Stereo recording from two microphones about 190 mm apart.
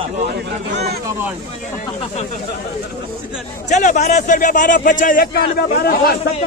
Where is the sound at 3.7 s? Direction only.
40° left (ahead or behind).